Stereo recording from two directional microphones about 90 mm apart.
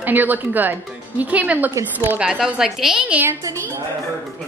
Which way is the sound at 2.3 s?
5° right (ahead or behind).